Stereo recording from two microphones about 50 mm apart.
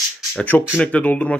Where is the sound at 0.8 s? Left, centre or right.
Left.